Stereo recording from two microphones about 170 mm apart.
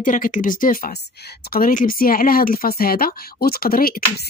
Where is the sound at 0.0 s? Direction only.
50° left (ahead or behind).